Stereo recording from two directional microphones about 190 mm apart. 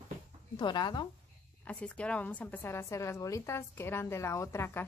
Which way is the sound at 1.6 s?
5° left (ahead or behind).